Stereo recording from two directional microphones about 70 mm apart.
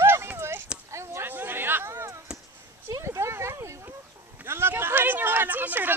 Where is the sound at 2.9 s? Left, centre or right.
Right.